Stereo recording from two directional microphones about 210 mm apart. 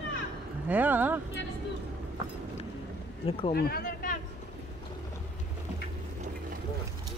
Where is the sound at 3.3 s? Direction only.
25° left (ahead or behind).